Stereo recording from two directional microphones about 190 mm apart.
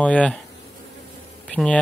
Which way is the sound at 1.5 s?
5° left (ahead or behind).